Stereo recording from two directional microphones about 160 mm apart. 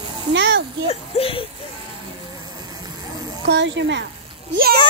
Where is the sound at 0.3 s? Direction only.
90° right.